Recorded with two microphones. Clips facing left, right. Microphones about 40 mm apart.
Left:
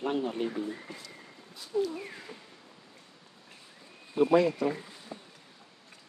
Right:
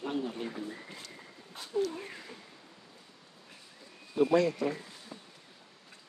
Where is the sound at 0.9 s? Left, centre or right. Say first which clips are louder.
Even; right.